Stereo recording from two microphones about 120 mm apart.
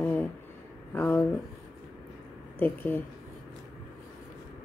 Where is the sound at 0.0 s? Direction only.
15° left (ahead or behind).